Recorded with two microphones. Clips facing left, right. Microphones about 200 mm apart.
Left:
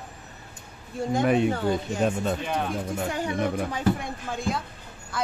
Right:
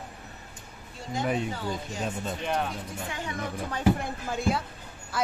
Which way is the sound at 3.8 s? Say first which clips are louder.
Right 4 dB; 5° right (ahead or behind).